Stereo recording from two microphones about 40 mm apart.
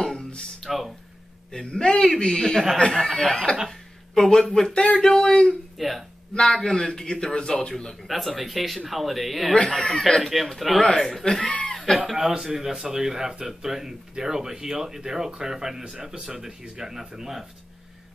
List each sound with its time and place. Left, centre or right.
0.6 s a sound: centre
1.7 s a man's voice: centre
3.1 s a man's voice: centre
3.6 s a sound: centre
4.6 s a man's voice: centre
5.8 s speech: centre
6.3 s a man's voice: centre
8.1 s a man's voice: centre
9.8 s a man's voice: centre
10.2 s a man's voice: centre
11.7 s chicken: centre
12.2 s speech: centre